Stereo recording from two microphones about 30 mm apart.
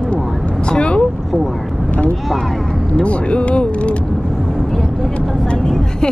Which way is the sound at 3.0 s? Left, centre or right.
Left.